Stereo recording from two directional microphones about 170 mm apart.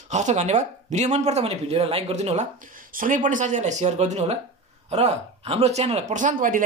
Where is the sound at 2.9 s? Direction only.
50° right (ahead or behind).